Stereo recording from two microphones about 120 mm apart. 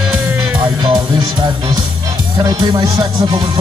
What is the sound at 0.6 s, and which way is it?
Music, 35° right (ahead or behind).